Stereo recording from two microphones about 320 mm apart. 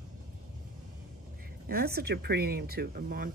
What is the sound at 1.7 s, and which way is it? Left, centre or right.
Speech, right.